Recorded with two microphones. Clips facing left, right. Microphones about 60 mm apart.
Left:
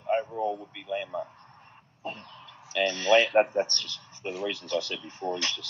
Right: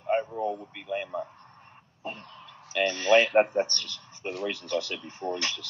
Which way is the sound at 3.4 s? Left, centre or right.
Right.